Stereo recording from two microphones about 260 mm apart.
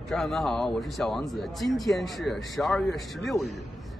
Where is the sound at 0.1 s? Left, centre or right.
Centre.